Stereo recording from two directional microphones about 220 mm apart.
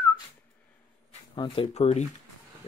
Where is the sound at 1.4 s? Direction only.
20° left (ahead or behind).